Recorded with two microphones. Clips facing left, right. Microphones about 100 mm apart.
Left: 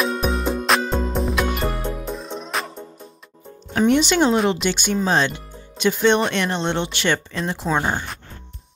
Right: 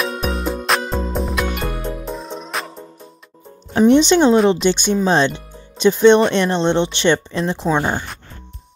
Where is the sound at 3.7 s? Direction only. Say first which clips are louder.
Right 5 dB; 25° right (ahead or behind).